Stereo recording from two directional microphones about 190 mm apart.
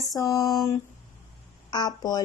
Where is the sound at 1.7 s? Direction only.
20° left (ahead or behind).